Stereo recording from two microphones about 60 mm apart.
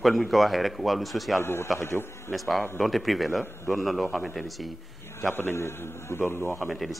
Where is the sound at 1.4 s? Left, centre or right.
Left.